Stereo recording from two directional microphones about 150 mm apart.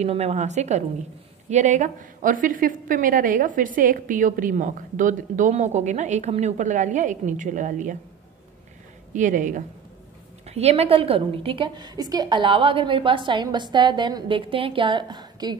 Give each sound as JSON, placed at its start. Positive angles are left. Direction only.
{"t": 0.0, "sound": "a woman's voice", "side_deg": -45}
{"t": 9.1, "sound": "a woman's voice", "side_deg": -60}
{"t": 10.4, "sound": "a woman's voice", "side_deg": -45}